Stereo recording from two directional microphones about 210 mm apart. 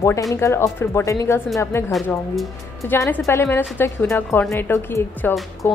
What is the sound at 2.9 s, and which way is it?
A woman's voice, 10° left (ahead or behind).